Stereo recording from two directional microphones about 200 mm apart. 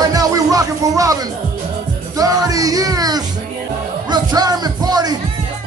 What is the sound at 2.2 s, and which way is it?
Music, 20° right (ahead or behind).